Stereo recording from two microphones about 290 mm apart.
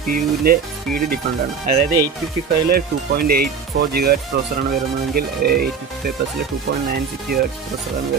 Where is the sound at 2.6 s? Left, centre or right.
Right.